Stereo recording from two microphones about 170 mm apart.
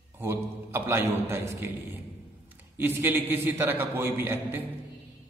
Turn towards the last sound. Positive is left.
turn(degrees=-10)  # may be behind; listen again after turning